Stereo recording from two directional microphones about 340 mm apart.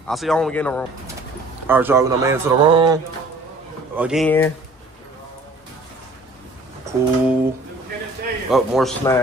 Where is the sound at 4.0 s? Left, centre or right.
Centre.